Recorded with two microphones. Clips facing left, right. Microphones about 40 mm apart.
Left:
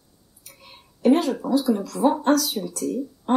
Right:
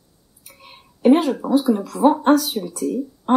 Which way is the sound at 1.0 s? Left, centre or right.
Right.